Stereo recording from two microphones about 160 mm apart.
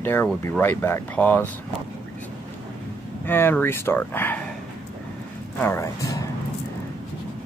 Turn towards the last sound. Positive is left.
turn(degrees=15)  # may be behind; listen again after turning